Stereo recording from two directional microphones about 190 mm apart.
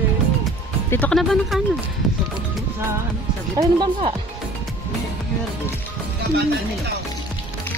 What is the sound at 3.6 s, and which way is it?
Speech, 25° right (ahead or behind).